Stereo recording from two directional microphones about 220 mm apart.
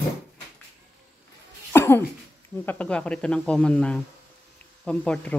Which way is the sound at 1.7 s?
10° left (ahead or behind).